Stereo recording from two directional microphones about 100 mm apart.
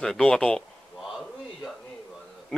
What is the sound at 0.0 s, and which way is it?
Speech, 5° left (ahead or behind).